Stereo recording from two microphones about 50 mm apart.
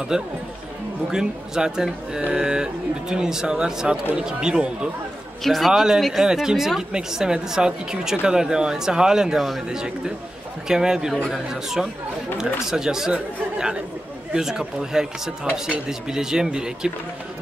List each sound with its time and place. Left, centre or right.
0.1 s speech: centre
5.4 s speech: centre
5.7 s speech: centre
5.9 s speech: centre
11.8 s speech: centre